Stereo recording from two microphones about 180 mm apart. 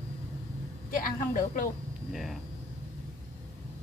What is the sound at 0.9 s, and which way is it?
Speech, 50° left (ahead or behind).